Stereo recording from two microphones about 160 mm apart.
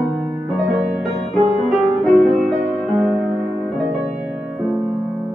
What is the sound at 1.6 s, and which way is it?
Music, centre (ahead or behind).